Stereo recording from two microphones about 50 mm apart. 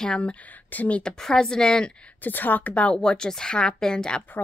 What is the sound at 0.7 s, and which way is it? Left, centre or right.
Speech, left.